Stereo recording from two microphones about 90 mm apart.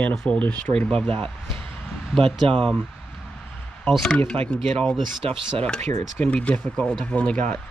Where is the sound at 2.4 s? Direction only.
90° right.